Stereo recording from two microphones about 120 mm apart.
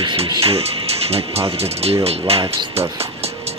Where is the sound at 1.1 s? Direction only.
60° right (ahead or behind).